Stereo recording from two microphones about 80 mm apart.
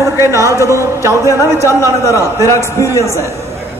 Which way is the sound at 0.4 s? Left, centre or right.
Right.